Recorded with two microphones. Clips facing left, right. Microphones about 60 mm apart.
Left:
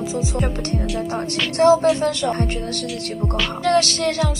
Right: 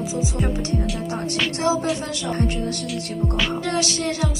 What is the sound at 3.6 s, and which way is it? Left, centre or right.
Music, left.